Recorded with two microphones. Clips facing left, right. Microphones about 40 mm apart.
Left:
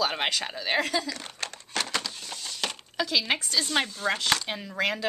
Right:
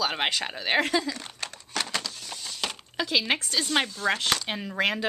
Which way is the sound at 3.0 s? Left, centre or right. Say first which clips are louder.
Right 1 dB; centre.